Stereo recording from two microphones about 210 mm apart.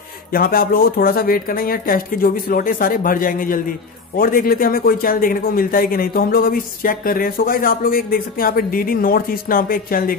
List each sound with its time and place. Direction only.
0.3 s speech: 45° left (ahead or behind)